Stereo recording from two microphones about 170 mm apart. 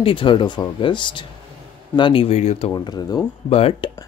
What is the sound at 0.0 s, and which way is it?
Speech, 30° left (ahead or behind).